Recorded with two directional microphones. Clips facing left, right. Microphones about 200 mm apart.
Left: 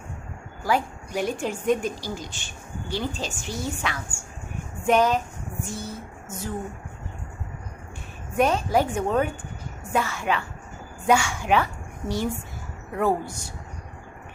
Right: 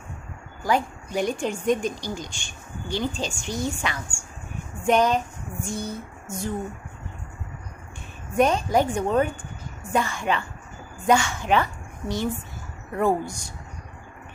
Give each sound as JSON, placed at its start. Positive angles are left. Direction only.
{"t": 0.7, "sound": "a woman's voice", "side_deg": 5}
{"t": 5.7, "sound": "a sound", "side_deg": 5}
{"t": 8.4, "sound": "a woman's voice", "side_deg": 5}